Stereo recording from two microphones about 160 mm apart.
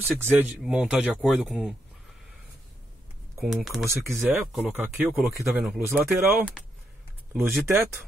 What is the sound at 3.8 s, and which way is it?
Speech, 15° right (ahead or behind).